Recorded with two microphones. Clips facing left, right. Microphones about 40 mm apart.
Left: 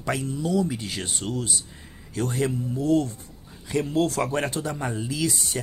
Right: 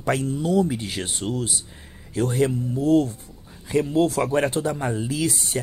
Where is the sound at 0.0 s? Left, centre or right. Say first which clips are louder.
Right 4 dB; right.